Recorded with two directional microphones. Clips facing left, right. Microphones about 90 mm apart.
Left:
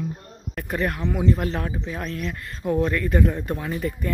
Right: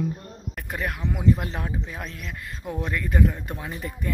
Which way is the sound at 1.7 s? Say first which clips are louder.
Left 4 dB; centre (ahead or behind).